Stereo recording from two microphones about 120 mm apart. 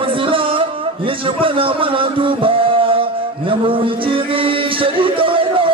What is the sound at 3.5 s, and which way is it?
Music, 45° right (ahead or behind).